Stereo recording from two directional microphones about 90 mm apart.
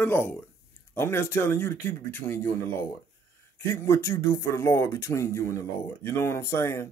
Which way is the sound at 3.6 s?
30° left (ahead or behind).